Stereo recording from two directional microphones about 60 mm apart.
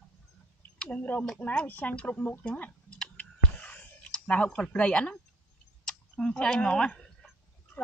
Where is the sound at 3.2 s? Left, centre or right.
Left.